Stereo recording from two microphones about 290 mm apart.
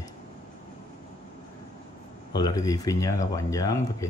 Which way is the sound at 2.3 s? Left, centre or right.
Centre.